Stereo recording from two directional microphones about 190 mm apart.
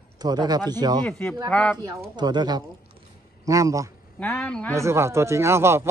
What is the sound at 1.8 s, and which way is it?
Speech, 20° right (ahead or behind).